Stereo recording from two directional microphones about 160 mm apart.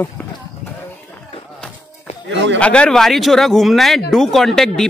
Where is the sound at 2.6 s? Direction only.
5° left (ahead or behind).